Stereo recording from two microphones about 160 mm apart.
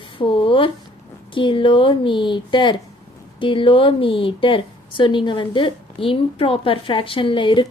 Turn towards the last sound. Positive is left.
turn(degrees=30)  # may be behind; listen again after turning